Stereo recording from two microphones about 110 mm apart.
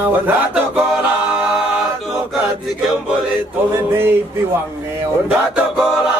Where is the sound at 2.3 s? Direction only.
Centre (ahead or behind).